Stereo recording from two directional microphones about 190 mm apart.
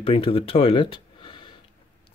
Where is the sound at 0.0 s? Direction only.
30° left (ahead or behind).